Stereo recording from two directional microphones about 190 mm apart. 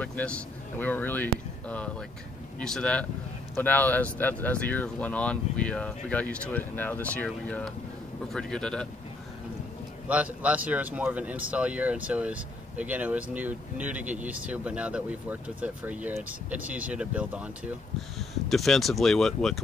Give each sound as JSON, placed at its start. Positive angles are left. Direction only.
{"t": 0.0, "sound": "speech", "side_deg": 5}
{"t": 10.0, "sound": "speech", "side_deg": -5}